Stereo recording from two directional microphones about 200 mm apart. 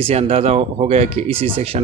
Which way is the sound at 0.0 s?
30° right (ahead or behind).